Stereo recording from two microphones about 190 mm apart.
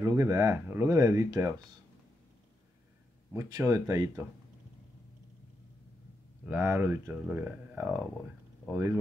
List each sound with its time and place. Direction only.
0.0 s speech: 15° right (ahead or behind)
3.3 s speech: 15° right (ahead or behind)
6.4 s speech: 10° right (ahead or behind)